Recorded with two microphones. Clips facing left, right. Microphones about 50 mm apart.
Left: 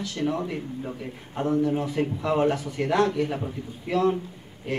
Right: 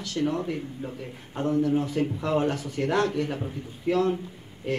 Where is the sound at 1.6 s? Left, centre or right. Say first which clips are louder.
Even; left.